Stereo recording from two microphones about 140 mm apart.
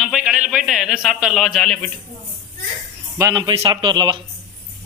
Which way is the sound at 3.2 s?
30° right (ahead or behind).